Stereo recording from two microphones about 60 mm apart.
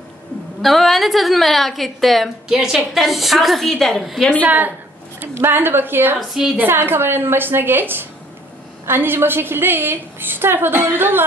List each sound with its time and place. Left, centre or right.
0.6 s a woman's voice: centre
2.4 s a woman's voice: centre
4.4 s a woman's voice: right
5.3 s a woman's voice: right
6.1 s a woman's voice: centre
6.6 s a woman's voice: right